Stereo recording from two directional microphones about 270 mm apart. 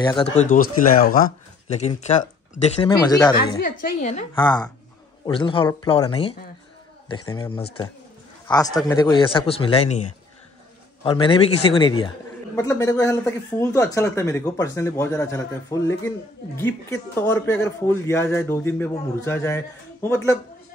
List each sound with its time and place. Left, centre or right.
0.0 s speech: centre
2.9 s speech: centre
3.6 s speech: left
11.1 s speech: centre